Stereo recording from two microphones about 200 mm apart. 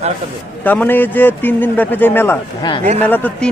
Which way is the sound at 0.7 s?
10° left (ahead or behind).